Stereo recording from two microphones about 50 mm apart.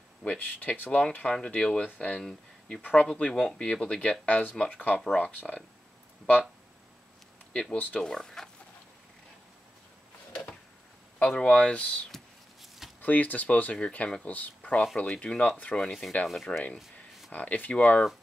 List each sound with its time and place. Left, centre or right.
0.2 s speech: left
1.3 s speech: left
2.1 s speech: centre
2.8 s speech: left
7.7 s speech: left
8.0 s speech: centre
11.2 s speech: centre
13.0 s speech: left
13.7 s speech: centre
15.7 s speech: centre